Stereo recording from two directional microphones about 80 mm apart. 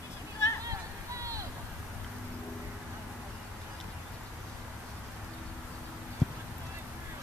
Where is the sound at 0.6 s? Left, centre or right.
Right.